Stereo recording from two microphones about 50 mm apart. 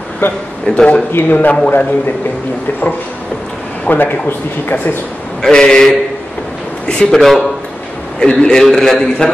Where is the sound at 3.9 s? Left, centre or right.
Left.